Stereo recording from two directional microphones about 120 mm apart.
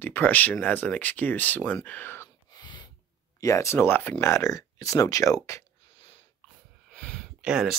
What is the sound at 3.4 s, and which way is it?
Speech, 25° left (ahead or behind).